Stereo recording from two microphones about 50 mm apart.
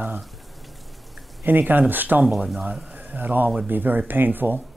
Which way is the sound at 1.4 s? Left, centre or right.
Right.